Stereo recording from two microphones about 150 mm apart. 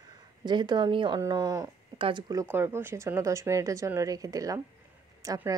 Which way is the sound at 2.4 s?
15° right (ahead or behind).